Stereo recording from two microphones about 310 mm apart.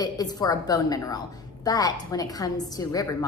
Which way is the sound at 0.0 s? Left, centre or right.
Centre.